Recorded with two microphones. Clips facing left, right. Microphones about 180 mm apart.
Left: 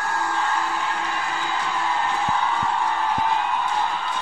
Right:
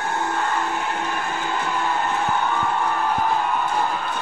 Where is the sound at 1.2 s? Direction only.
Centre (ahead or behind).